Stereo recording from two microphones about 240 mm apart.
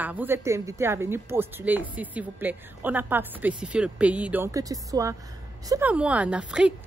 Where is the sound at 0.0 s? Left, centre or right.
Centre.